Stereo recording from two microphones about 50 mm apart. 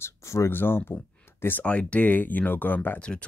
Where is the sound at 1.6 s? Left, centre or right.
Left.